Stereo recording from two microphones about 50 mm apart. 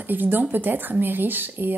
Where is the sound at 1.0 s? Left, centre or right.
Right.